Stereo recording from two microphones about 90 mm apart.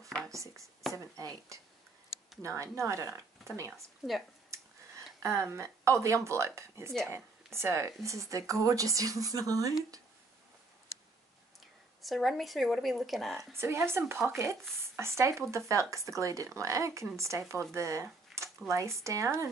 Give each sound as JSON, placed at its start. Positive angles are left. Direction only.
{"t": 0.3, "sound": "speech", "side_deg": -35}
{"t": 5.2, "sound": "speech", "side_deg": -35}
{"t": 12.0, "sound": "a woman's voice", "side_deg": 0}
{"t": 13.6, "sound": "speech", "side_deg": -30}